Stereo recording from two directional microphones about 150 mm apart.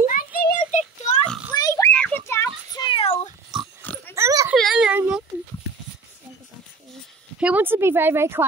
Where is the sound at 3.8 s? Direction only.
10° left (ahead or behind).